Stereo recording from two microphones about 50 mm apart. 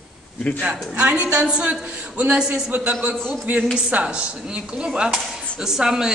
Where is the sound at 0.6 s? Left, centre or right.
Right.